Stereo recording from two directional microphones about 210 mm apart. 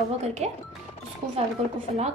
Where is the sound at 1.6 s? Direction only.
30° right (ahead or behind).